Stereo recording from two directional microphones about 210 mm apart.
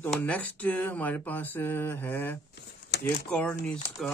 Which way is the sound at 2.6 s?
50° left (ahead or behind).